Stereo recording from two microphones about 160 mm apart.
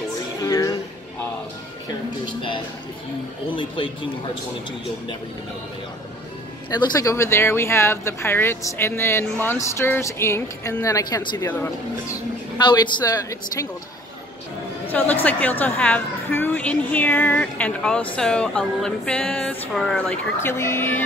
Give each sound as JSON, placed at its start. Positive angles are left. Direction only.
{"t": 0.4, "sound": "music", "side_deg": 20}
{"t": 3.4, "sound": "speech", "side_deg": 30}
{"t": 6.7, "sound": "speech", "side_deg": 20}
{"t": 12.5, "sound": "speech", "side_deg": 30}
{"t": 14.9, "sound": "speech", "side_deg": 10}